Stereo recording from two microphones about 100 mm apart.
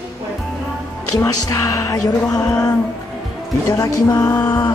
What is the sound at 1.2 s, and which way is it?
Music, 30° left (ahead or behind).